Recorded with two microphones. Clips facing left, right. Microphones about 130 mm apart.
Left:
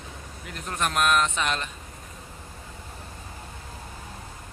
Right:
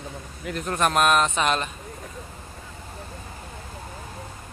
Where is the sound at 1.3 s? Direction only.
20° right (ahead or behind).